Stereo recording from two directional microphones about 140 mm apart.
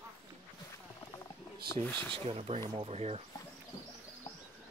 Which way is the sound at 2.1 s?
45° right (ahead or behind).